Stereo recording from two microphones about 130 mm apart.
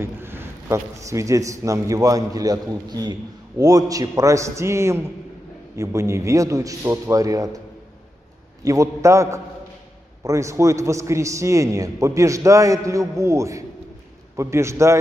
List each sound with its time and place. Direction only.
0.0 s a man's voice: 15° right (ahead or behind)
8.6 s a man's voice: 25° right (ahead or behind)